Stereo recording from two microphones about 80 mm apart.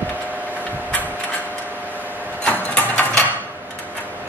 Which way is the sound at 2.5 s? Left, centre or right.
Centre.